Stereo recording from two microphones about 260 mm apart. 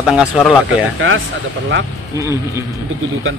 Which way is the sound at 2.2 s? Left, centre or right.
Centre.